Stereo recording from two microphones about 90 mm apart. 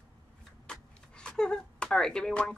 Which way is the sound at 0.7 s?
10° left (ahead or behind).